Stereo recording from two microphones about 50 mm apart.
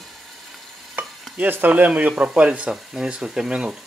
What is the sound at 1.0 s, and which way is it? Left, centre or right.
Stir, right.